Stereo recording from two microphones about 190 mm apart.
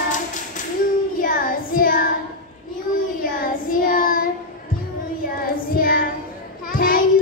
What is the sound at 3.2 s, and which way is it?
Child singing, 50° left (ahead or behind).